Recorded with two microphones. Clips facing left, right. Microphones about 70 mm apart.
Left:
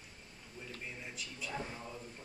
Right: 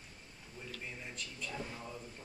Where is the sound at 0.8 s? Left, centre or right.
Centre.